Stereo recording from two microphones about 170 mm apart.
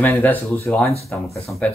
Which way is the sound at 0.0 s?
10° left (ahead or behind).